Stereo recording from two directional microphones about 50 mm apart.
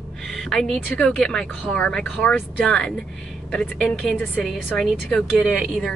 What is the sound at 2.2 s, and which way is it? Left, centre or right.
Speech, left.